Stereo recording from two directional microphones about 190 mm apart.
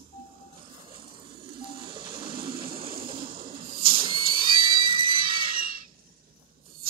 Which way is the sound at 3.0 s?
25° right (ahead or behind).